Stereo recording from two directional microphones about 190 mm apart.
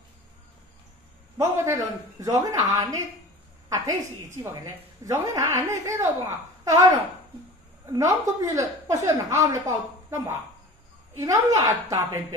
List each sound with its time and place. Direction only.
1.4 s a woman's voice: 15° right (ahead or behind)